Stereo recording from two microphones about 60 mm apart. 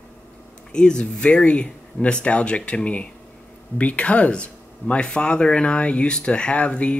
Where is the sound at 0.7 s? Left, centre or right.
Centre.